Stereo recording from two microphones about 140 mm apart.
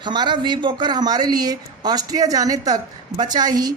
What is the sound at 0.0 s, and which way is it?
Speech, 30° right (ahead or behind).